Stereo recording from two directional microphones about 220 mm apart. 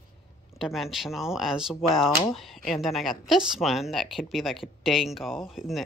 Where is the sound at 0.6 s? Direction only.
Centre (ahead or behind).